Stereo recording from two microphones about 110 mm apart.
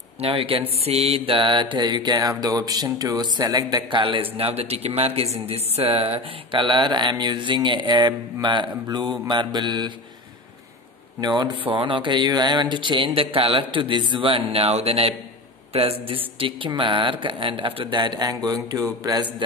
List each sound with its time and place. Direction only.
0.2 s speech: 55° right (ahead or behind)
0.7 s speech: 70° right (ahead or behind); by 4.0 s 35° right (ahead or behind)
4.0 s speech: 55° right (ahead or behind)
11.1 s speech: 40° right (ahead or behind); by 16.2 s 65° right (ahead or behind)
16.3 s speech: 55° right (ahead or behind); by 19.2 s 30° right (ahead or behind)